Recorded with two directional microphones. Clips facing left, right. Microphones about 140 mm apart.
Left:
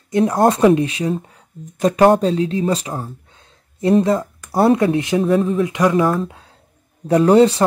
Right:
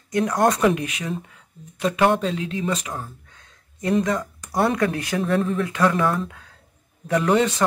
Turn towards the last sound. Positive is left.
turn(degrees=35)  # may be behind; listen again after turning